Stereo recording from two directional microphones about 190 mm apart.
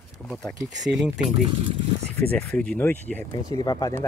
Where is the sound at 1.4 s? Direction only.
30° right (ahead or behind).